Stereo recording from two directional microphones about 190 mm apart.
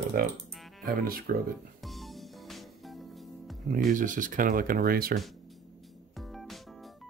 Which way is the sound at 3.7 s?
45° right (ahead or behind).